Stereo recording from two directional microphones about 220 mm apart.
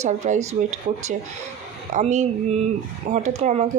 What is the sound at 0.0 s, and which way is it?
Speech, 35° right (ahead or behind).